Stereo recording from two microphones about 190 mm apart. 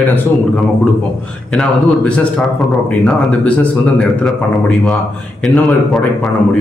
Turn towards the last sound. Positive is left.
turn(degrees=5)  # may be behind; listen again after turning